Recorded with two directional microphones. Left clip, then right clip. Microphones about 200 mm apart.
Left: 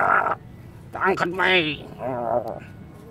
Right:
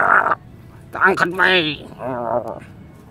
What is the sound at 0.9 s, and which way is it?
Speech, 15° right (ahead or behind).